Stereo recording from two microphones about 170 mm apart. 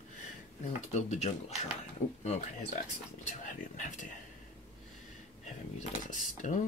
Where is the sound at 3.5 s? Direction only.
50° left (ahead or behind).